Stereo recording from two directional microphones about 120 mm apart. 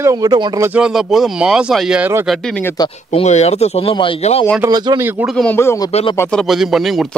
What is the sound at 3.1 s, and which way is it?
Speech, 65° left (ahead or behind).